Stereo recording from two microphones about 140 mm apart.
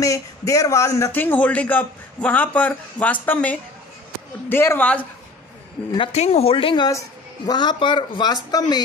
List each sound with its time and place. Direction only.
0.0 s a man's voice: 25° left (ahead or behind)
6.1 s speech: 50° left (ahead or behind)
6.9 s speech: 25° left (ahead or behind)